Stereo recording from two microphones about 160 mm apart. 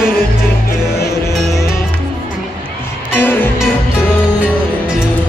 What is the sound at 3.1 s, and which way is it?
Music, 15° left (ahead or behind).